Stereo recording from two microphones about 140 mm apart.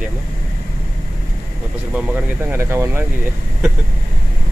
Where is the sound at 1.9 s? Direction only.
15° right (ahead or behind).